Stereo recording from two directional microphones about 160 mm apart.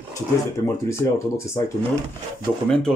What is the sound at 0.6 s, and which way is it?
Speech, 15° left (ahead or behind).